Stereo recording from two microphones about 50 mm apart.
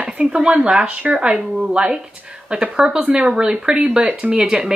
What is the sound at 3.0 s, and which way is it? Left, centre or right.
Speech, right.